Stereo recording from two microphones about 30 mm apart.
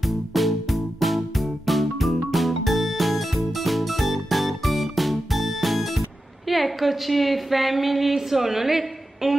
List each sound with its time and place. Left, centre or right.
0.1 s music: centre
6.5 s a woman's voice: centre